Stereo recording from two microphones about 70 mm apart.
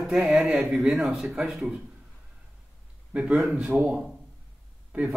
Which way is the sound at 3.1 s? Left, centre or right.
Centre.